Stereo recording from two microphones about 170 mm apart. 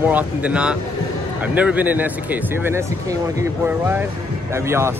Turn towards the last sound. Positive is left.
turn(degrees=-15)  # may be behind; listen again after turning